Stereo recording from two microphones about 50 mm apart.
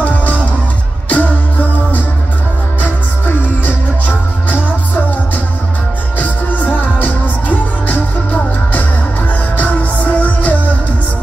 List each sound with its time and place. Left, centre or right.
0.0 s music: left
6.6 s music: left